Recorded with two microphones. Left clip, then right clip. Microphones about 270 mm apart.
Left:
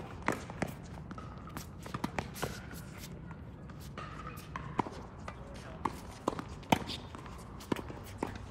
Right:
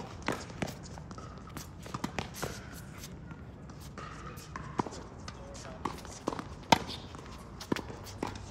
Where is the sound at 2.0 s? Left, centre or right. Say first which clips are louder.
Even; centre.